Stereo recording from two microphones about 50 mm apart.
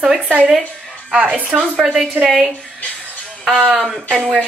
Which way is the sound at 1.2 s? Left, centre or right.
Right.